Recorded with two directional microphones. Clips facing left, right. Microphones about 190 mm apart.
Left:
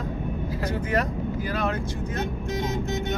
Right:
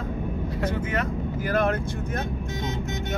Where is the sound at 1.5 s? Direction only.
50° right (ahead or behind).